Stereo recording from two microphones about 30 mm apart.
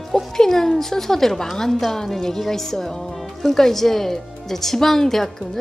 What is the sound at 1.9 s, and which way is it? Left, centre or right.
Speech, centre.